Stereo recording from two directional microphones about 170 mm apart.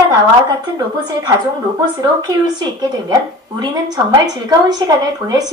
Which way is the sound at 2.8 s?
25° right (ahead or behind).